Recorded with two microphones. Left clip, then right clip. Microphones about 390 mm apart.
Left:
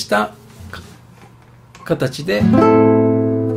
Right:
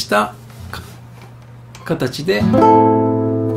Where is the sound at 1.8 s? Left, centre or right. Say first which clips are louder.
Left 1 dB; centre.